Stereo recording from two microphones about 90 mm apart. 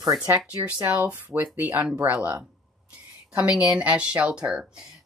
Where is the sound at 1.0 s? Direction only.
20° right (ahead or behind).